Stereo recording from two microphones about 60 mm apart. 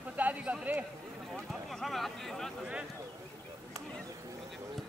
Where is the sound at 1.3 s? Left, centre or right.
Centre.